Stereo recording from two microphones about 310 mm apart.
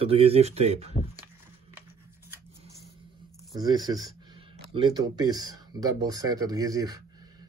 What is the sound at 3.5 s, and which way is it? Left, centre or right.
Speech, centre.